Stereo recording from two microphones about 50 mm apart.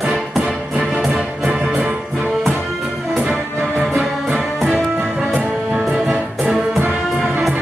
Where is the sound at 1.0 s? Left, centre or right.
Centre.